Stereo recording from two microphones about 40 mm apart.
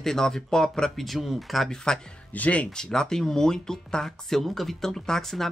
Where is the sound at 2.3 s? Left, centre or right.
Left.